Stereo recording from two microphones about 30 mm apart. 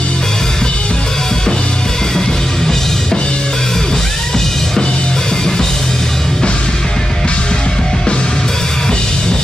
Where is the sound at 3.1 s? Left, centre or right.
Left; by 4.6 s centre.